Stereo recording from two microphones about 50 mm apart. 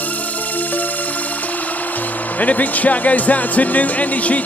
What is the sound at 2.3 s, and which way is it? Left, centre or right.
Speech, left.